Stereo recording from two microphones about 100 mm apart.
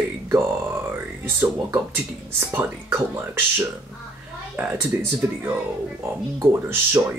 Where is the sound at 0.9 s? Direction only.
25° right (ahead or behind).